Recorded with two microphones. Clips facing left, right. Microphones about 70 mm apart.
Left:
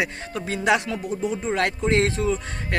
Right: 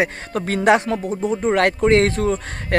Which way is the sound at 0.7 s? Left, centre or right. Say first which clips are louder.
Right 5 dB; right.